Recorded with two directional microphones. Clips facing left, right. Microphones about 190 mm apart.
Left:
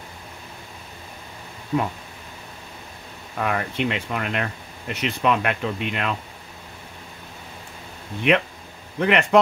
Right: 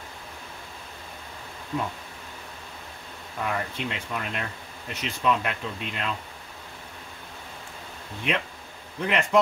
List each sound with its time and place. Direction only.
3.3 s speech: 70° left (ahead or behind)
8.3 s speech: 65° left (ahead or behind)